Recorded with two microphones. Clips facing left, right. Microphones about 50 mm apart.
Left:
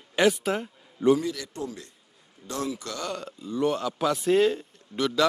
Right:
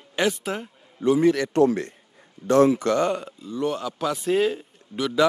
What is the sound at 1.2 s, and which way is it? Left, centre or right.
Speech, right.